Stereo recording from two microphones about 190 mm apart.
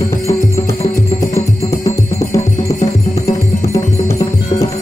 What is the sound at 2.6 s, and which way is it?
Music, 40° left (ahead or behind).